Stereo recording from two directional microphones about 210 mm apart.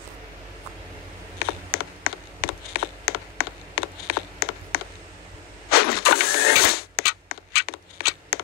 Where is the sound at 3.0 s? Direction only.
45° left (ahead or behind).